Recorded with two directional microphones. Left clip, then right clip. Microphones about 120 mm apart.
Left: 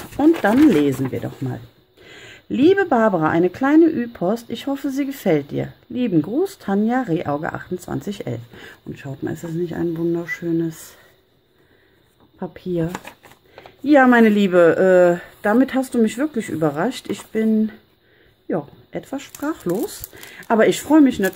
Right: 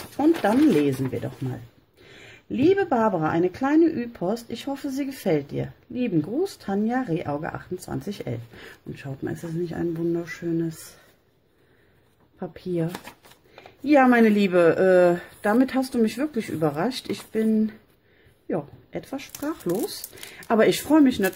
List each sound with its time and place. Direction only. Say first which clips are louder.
0.4 s speech: left 5 dB; 20° left (ahead or behind)
12.4 s speech: left 4 dB; 15° left (ahead or behind)